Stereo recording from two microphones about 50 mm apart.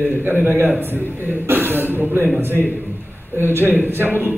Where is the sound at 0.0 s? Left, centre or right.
Right.